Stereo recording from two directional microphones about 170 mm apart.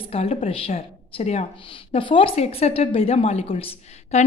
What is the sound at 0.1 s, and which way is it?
A woman's voice, 35° left (ahead or behind).